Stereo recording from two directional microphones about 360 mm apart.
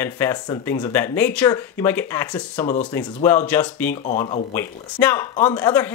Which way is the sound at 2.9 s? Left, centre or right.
Centre.